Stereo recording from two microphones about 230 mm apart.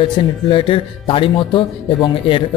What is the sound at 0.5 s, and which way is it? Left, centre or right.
Speech, left.